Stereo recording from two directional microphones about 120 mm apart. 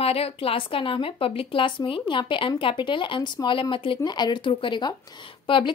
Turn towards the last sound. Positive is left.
turn(degrees=45)  # may be behind; listen again after turning